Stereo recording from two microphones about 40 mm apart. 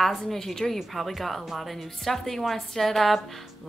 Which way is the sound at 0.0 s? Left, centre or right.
Centre.